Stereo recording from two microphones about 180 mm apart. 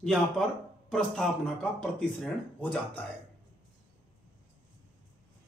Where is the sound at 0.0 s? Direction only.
5° left (ahead or behind).